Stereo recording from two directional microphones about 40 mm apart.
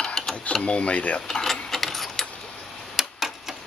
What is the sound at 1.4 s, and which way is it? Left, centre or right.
Sewing machine, centre.